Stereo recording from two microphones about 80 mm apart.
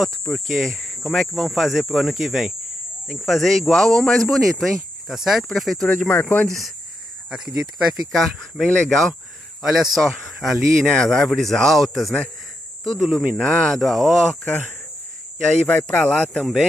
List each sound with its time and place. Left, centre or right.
0.0 s speech: centre
5.9 s speech: left
6.4 s speech: centre
8.1 s speech: centre
9.6 s speech: centre
15.6 s speech: centre